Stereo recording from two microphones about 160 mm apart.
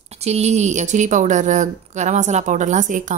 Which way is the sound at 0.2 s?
40° right (ahead or behind).